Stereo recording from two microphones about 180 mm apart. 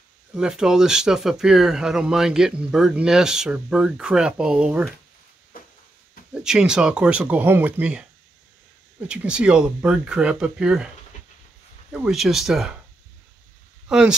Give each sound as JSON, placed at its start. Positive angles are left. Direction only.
{"t": 0.3, "sound": "speech", "side_deg": -5}
{"t": 5.5, "sound": "a sound", "side_deg": 50}
{"t": 6.3, "sound": "speech", "side_deg": -5}
{"t": 9.0, "sound": "speech", "side_deg": -5}
{"t": 11.9, "sound": "speech", "side_deg": -5}
{"t": 13.8, "sound": "speech", "side_deg": -5}